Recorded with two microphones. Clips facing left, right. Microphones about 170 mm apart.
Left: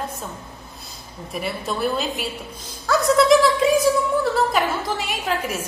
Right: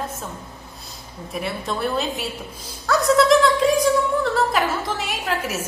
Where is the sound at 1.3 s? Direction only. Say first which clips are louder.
Even; centre (ahead or behind).